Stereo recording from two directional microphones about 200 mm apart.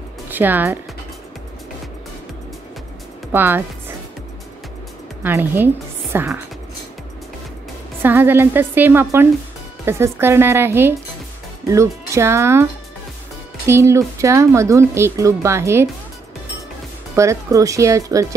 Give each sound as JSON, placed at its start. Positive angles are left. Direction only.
{"t": 0.3, "sound": "speech", "side_deg": -10}
{"t": 3.3, "sound": "speech", "side_deg": -10}
{"t": 5.2, "sound": "speech", "side_deg": -10}
{"t": 8.0, "sound": "speech", "side_deg": -10}
{"t": 13.7, "sound": "speech", "side_deg": -15}
{"t": 17.1, "sound": "speech", "side_deg": -15}